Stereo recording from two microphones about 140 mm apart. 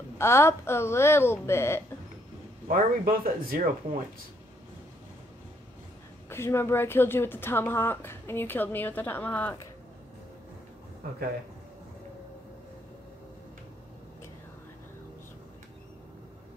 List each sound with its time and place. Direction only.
0.2 s a woman's voice: 20° left (ahead or behind)
2.7 s speech: 90° right
6.2 s a woman's voice: 20° left (ahead or behind)